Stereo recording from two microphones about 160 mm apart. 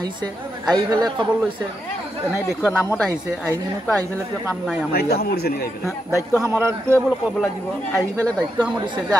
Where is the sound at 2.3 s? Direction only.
15° left (ahead or behind).